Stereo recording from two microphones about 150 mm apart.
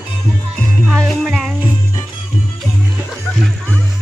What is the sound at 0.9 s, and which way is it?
Music, centre (ahead or behind).